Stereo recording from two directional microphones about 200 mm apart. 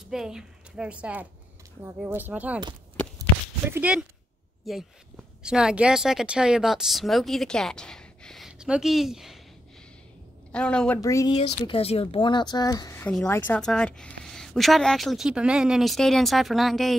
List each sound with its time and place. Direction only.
0.1 s speech: 5° right (ahead or behind)
3.2 s a sound: 10° right (ahead or behind)
4.6 s speech: 5° right (ahead or behind)
10.5 s speech: 5° left (ahead or behind)
11.0 s speech: 15° left (ahead or behind)
11.3 s speech: 30° left (ahead or behind); by 16.9 s centre (ahead or behind)